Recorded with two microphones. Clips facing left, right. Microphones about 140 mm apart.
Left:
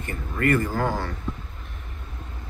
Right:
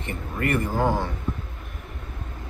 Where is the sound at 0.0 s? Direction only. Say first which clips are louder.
Left 2 dB; 25° right (ahead or behind).